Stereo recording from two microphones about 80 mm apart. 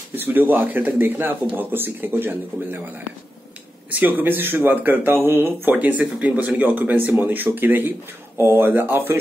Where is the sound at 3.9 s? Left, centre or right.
Right.